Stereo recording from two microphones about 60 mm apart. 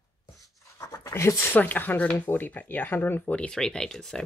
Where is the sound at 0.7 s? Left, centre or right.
Left.